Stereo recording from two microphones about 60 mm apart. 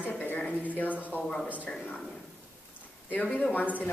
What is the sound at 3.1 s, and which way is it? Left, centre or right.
Speech, left.